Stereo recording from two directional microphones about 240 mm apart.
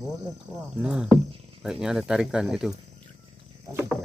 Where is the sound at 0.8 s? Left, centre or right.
Centre.